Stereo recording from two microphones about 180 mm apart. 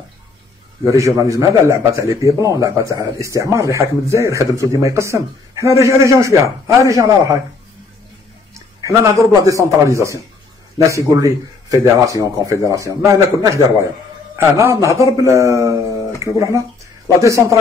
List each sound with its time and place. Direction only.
0.9 s speech: 15° right (ahead or behind)
8.5 s speech: 15° right (ahead or behind)